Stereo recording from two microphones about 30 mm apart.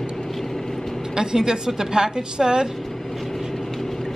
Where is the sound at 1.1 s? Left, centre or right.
Right.